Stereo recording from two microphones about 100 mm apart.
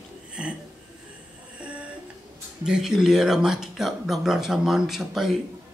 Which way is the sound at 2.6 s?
5° right (ahead or behind).